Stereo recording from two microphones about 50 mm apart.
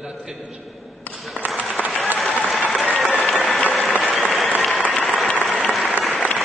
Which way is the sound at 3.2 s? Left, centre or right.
Centre.